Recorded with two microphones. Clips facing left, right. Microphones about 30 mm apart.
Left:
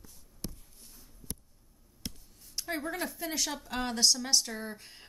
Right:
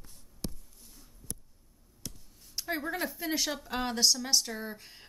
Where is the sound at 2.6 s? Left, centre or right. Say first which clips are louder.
Right 1 dB; centre.